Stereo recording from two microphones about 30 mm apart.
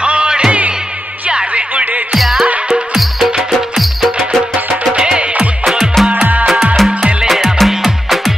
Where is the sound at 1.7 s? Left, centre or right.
Right.